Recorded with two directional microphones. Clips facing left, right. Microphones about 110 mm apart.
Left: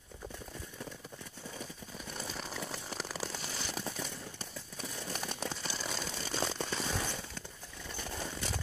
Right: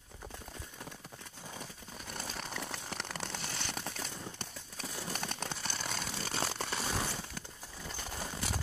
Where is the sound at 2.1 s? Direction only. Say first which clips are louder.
Even; centre (ahead or behind).